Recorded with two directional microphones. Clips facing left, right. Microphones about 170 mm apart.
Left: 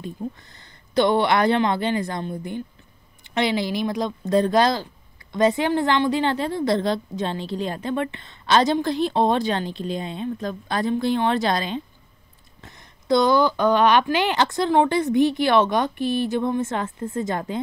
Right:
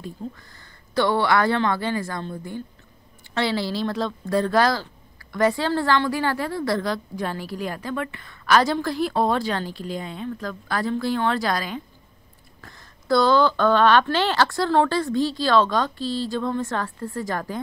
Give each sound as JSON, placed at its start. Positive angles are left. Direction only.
{"t": 0.0, "sound": "a woman's voice", "side_deg": 20}